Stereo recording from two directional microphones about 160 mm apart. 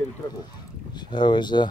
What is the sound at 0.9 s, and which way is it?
Speech, 25° left (ahead or behind).